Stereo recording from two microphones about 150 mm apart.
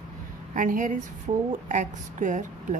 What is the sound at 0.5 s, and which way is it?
Speech, 60° right (ahead or behind).